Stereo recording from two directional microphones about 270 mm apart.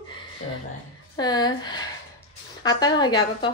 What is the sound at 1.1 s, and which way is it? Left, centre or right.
A woman's voice, centre.